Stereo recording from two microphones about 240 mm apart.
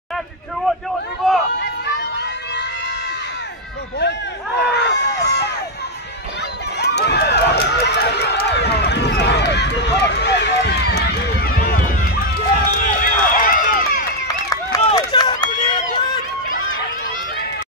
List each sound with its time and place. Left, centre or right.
1.2 s run: centre
1.9 s children playing: left
4.6 s run: left
6.8 s run: left
14.8 s run: centre